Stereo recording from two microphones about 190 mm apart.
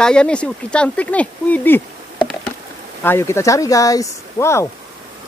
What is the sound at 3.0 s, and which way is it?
Speech, 15° left (ahead or behind).